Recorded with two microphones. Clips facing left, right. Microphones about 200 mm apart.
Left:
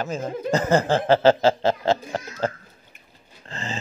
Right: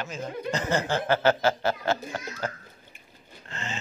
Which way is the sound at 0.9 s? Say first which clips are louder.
Left 6 dB; 30° left (ahead or behind).